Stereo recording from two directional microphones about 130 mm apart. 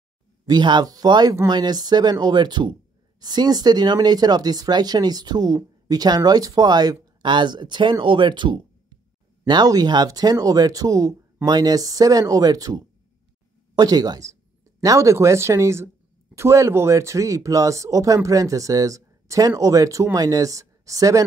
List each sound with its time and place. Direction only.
0.5 s speech: 35° right (ahead or behind)